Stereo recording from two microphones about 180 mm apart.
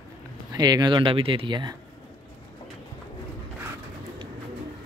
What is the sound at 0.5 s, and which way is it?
Speech, 20° right (ahead or behind).